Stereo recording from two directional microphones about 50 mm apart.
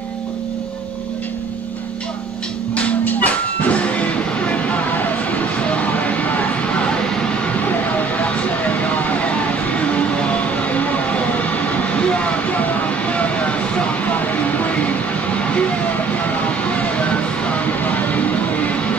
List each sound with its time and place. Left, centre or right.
2.7 s music: left
4.9 s a sound: left
6.9 s vehicle: centre
8.2 s a sound: left
11.3 s vehicle: left
16.6 s music: left